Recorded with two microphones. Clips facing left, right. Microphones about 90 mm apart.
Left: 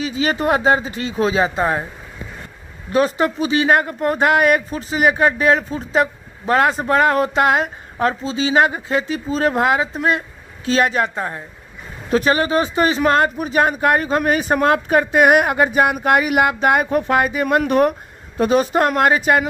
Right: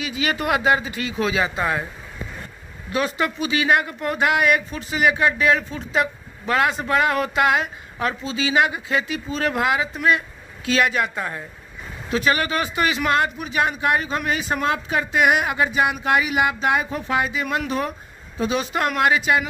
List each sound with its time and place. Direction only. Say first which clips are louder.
0.0 s speech: left 5 dB; 35° left (ahead or behind)
2.9 s speech: left 6 dB; 40° left (ahead or behind)
12.4 s a man's voice: left 5 dB; 30° left (ahead or behind); by 17.9 s 55° left (ahead or behind)
18.4 s a man's voice: left 7 dB; 45° left (ahead or behind)